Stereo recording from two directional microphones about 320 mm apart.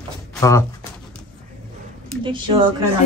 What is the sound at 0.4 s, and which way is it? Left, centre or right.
Speech, centre.